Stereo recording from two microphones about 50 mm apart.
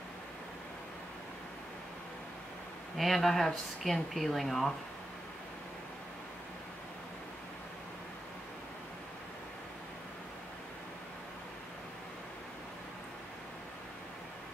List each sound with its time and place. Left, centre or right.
3.0 s speech: centre